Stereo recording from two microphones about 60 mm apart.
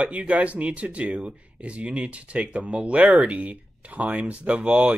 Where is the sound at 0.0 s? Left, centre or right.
Right.